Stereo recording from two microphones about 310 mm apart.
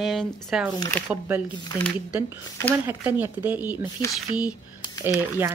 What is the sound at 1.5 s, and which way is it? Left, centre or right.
Speech, centre.